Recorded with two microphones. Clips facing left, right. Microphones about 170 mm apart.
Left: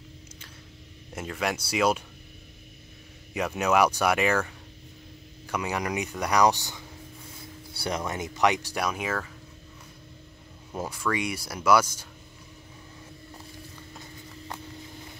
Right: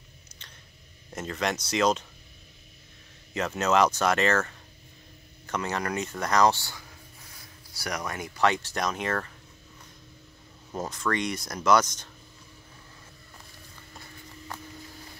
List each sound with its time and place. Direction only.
1.1 s speech: 5° left (ahead or behind)
3.3 s speech: 10° left (ahead or behind)
7.7 s speech: 25° left (ahead or behind); by 9.3 s 5° left (ahead or behind)
10.8 s speech: 10° left (ahead or behind)